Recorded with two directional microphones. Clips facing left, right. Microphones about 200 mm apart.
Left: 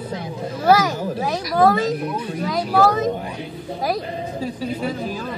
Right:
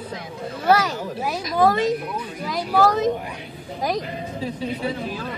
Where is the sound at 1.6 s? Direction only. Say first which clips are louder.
Left 2 dB; centre (ahead or behind).